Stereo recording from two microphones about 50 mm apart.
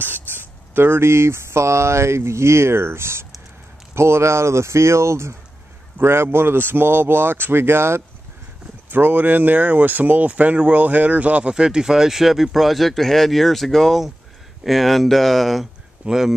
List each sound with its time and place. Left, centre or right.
0.0 s speech: right
5.9 s speech: right
8.9 s speech: right; by 16.3 s centre